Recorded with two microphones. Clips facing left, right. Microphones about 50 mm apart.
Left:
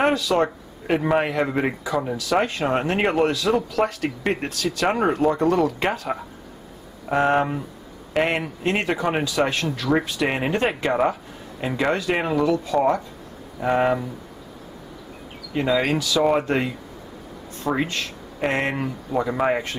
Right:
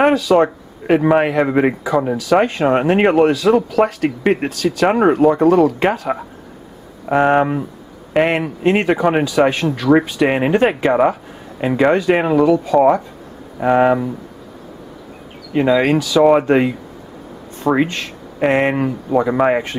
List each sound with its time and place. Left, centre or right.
0.0 s a man's voice: centre
15.5 s a man's voice: centre
17.7 s a man's voice: centre